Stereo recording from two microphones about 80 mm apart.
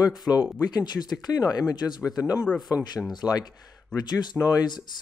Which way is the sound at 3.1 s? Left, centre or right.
Left.